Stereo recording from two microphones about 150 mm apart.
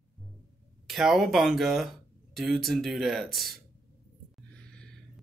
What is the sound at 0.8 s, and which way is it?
Speech, centre (ahead or behind).